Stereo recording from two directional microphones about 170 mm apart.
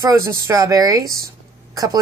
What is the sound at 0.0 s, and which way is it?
Speech, 20° right (ahead or behind).